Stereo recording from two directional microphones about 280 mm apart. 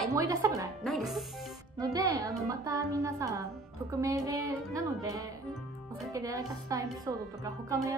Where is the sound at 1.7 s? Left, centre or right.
Centre.